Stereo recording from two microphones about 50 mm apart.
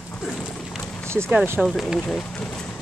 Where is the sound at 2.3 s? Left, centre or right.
Centre.